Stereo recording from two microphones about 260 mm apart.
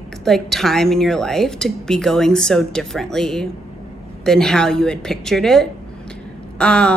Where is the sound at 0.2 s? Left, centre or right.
Centre.